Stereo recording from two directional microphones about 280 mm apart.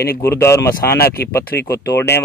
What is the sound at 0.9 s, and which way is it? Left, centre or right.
Speech, left.